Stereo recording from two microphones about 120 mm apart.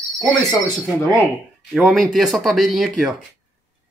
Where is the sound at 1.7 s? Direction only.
Centre (ahead or behind).